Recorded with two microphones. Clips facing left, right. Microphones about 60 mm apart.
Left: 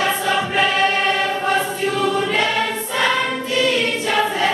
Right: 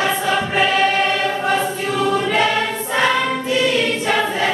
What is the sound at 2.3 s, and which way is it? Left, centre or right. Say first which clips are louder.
Choir: right 2 dB; right.